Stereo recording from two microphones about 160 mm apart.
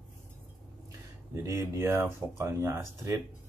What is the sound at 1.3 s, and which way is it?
A man's voice, 20° right (ahead or behind).